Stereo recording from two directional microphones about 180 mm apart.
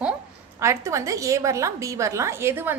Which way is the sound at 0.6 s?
15° right (ahead or behind).